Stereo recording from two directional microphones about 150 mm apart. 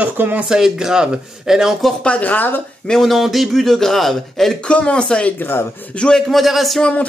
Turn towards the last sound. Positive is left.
turn(degrees=0)  # may be behind; listen again after turning